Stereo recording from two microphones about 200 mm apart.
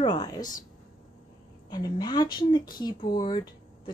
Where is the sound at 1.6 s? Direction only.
20° left (ahead or behind).